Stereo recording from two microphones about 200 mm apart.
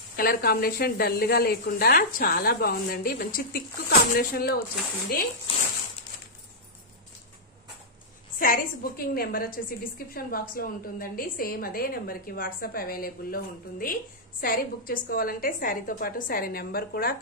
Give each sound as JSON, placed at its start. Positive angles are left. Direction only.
{"t": 0.1, "sound": "a woman's voice", "side_deg": 45}
{"t": 8.4, "sound": "a woman's voice", "side_deg": 45}